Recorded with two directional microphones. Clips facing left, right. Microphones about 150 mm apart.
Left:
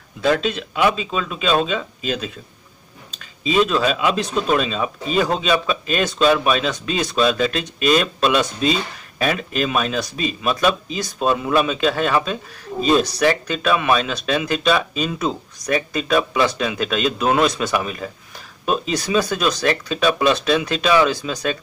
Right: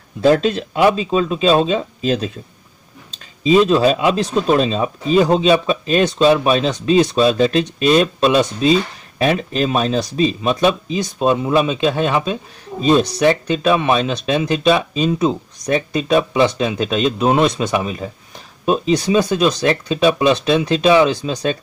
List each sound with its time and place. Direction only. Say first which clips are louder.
0.2 s speech: right 5 dB; 40° right (ahead or behind)